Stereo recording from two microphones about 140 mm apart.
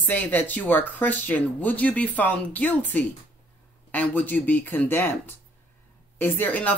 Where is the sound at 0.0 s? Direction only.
10° left (ahead or behind).